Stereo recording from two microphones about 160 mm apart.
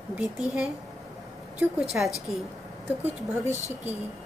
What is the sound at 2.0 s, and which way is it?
Speech, 10° right (ahead or behind).